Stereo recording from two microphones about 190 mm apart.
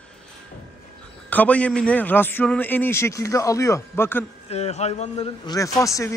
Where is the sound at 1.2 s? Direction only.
10° left (ahead or behind).